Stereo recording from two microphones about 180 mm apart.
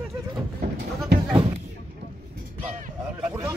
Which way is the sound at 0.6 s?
65° right (ahead or behind).